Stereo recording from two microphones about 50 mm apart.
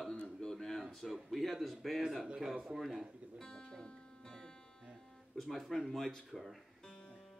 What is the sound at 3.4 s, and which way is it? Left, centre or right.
Music, centre.